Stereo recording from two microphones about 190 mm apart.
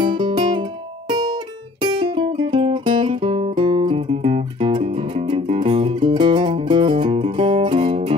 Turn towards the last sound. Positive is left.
turn(degrees=-25)  # may be behind; listen again after turning